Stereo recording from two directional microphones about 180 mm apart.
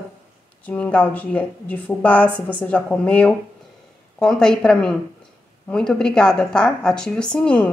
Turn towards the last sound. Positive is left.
turn(degrees=5)  # may be behind; listen again after turning